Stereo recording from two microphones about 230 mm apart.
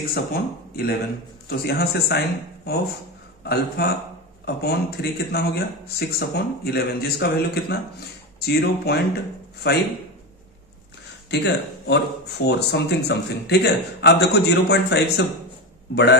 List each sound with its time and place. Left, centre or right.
0.1 s a man's voice: left
11.2 s a man's voice: left